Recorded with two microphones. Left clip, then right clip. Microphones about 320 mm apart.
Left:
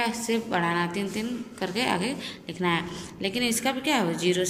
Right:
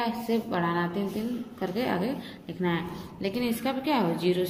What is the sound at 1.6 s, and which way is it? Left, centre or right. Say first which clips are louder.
A woman's voice: left 2 dB; centre.